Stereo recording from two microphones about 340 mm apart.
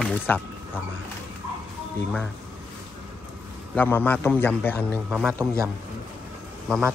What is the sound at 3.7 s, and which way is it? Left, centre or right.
A man's voice, centre.